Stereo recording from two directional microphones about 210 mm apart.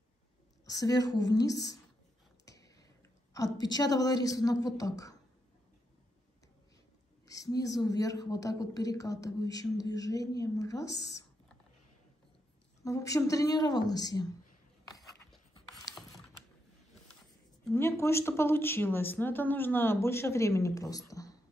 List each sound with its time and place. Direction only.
0.7 s a woman's voice: 15° left (ahead or behind)
2.4 s a sound: 15° left (ahead or behind)
3.5 s a woman's voice: 20° left (ahead or behind)
7.2 s a woman's voice: 15° left (ahead or behind)
12.8 s a woman's voice: 15° left (ahead or behind)
17.7 s a woman's voice: 10° left (ahead or behind)